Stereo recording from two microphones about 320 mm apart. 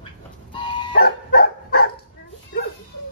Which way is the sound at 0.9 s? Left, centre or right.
Left.